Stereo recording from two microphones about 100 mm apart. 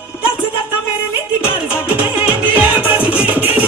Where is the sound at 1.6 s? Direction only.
15° right (ahead or behind).